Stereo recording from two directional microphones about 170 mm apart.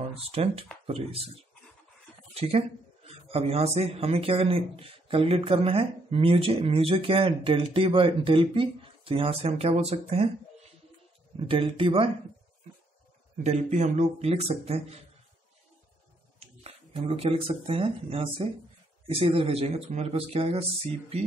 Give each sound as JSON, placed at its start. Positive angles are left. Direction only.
{"t": 0.1, "sound": "a man's voice", "side_deg": -35}
{"t": 13.4, "sound": "a man's voice", "side_deg": -40}
{"t": 16.3, "sound": "a man's voice", "side_deg": -35}